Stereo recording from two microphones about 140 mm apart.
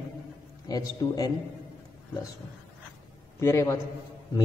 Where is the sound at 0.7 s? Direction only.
25° left (ahead or behind).